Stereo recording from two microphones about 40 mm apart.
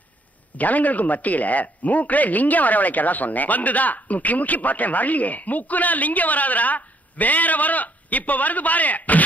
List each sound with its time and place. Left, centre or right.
0.6 s speech: left